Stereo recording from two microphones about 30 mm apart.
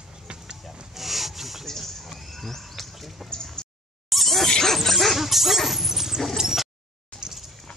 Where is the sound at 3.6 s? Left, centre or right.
Left.